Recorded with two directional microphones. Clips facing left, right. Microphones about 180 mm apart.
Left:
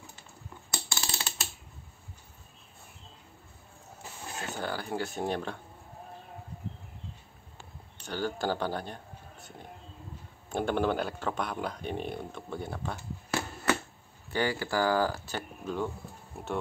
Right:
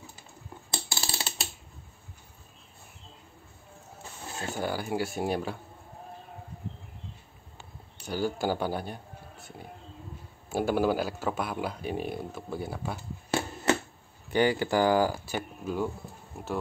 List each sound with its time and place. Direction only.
0.7 s ratchet: 30° right (ahead or behind)
4.6 s speech: 10° right (ahead or behind)
8.0 s speech: 10° right (ahead or behind)
13.3 s a sound: 25° right (ahead or behind)
14.3 s speech: 20° right (ahead or behind); by 16.5 s centre (ahead or behind)